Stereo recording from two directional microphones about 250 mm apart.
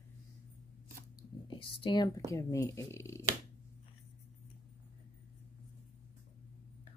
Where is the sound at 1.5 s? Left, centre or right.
Centre.